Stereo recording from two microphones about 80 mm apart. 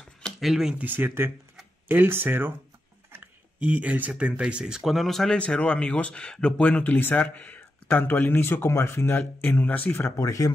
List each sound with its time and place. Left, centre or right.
0.2 s a sound: centre
0.7 s speech: right; by 9.0 s left
9.4 s speech: left
9.9 s speech: left
10.2 s speech: left